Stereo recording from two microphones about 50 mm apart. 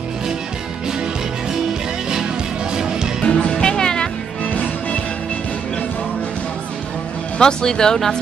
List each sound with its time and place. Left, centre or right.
2.7 s music: centre
3.3 s music: left
7.3 s speech: centre